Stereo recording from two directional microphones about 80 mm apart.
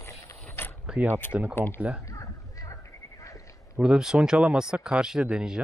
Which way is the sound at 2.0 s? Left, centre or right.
Left.